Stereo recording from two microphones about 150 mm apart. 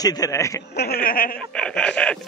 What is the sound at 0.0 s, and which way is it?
Speech, 25° left (ahead or behind).